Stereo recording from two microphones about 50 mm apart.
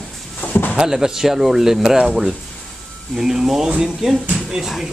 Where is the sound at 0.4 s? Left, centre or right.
Left.